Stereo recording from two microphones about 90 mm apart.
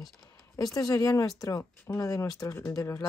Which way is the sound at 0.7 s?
40° left (ahead or behind).